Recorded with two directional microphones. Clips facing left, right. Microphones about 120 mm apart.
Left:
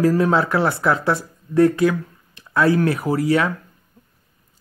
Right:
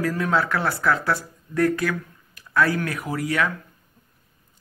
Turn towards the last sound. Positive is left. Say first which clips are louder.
# left 6 dB
turn(degrees=25)  # may be behind; listen again after turning